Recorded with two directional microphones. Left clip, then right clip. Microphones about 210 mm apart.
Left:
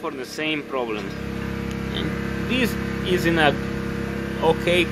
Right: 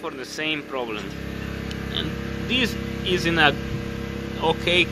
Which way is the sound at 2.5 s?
5° left (ahead or behind).